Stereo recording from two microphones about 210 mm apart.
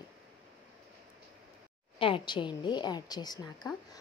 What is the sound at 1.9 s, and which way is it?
A woman's voice, 25° left (ahead or behind).